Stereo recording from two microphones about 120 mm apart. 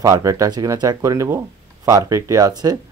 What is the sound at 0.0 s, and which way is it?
Speech, 30° right (ahead or behind).